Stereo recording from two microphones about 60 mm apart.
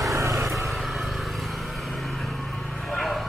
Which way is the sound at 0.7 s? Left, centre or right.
Centre.